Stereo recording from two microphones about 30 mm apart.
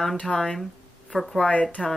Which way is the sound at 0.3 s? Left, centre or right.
Centre.